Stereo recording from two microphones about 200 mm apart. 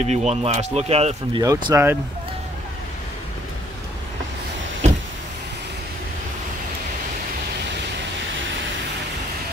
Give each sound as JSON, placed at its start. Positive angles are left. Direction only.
{"t": 0.0, "sound": "speech", "side_deg": -35}
{"t": 1.4, "sound": "speech", "side_deg": -15}